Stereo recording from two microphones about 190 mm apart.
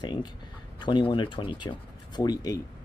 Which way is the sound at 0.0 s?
25° left (ahead or behind).